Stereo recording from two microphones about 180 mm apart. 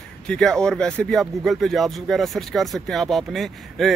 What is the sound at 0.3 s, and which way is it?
Speech, 5° left (ahead or behind).